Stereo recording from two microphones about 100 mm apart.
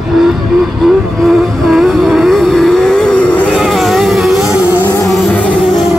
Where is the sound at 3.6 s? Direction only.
Centre (ahead or behind).